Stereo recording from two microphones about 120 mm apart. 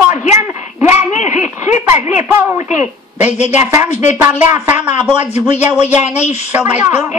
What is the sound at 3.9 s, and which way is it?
Speech, 70° left (ahead or behind).